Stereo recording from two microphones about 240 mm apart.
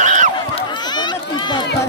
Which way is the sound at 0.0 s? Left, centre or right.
Right.